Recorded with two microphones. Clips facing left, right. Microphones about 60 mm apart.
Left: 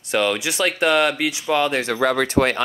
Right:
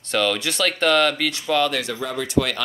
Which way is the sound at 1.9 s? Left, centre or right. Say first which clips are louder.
Left 8 dB; left.